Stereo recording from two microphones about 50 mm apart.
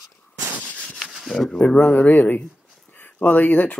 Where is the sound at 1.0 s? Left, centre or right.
Centre.